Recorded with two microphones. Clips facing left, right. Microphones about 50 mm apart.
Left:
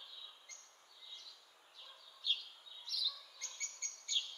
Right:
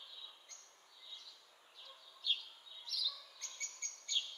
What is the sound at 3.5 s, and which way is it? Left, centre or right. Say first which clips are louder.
Chirp: right 1 dB; left.